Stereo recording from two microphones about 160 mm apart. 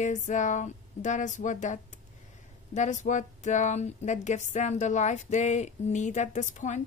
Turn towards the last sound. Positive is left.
turn(degrees=50)  # may be behind; listen again after turning